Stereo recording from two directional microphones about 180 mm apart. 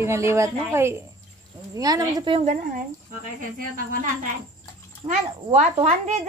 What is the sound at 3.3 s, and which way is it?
Speech, 45° right (ahead or behind).